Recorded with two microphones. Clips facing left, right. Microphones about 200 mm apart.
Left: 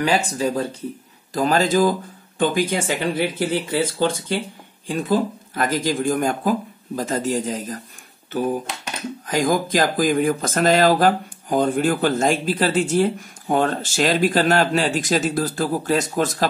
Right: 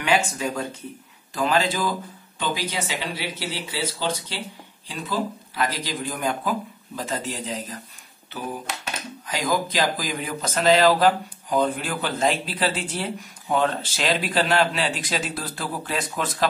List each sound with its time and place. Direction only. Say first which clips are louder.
0.0 s speech: left 3 dB; 35° left (ahead or behind)
9.3 s speech: left 5 dB; 50° left (ahead or behind)